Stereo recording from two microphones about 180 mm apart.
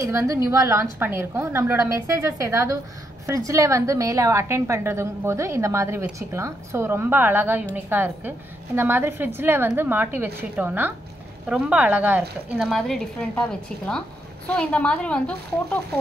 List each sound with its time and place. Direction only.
0.0 s a woman's voice: 15° right (ahead or behind)
12.6 s a woman's voice: centre (ahead or behind)